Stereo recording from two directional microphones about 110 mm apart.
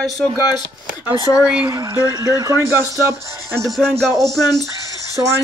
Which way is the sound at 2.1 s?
35° right (ahead or behind).